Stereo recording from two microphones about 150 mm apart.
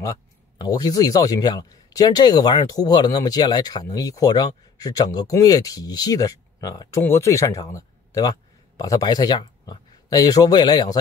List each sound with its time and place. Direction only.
0.0 s a man's voice: 25° left (ahead or behind)